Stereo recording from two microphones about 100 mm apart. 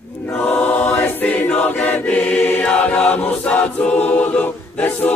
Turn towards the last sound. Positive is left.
turn(degrees=15)  # may be behind; listen again after turning